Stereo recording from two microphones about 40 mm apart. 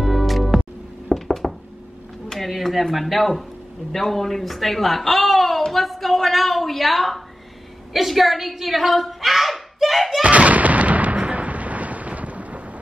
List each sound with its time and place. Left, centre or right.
0.0 s music: centre
1.1 s a sound: centre
2.9 s speech: centre
5.7 s a sound: centre
7.9 s a woman's voice: centre
10.2 s artillery fire: right